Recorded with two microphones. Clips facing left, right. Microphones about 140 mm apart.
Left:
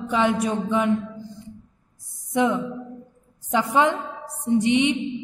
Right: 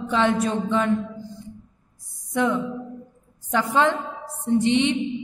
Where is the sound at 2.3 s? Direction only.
15° left (ahead or behind).